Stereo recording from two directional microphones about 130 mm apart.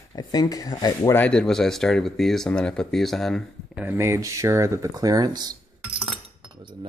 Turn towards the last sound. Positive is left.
turn(degrees=-35)  # may be behind; listen again after turning